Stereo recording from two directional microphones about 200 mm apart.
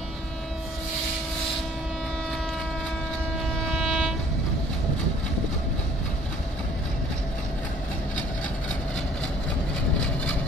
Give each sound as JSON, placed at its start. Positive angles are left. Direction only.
{"t": 3.7, "sound": "train", "side_deg": -5}